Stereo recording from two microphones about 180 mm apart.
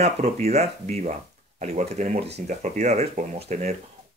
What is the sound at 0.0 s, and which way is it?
Speech, 35° right (ahead or behind).